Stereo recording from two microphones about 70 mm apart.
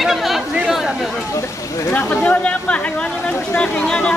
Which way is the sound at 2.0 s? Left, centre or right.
Centre.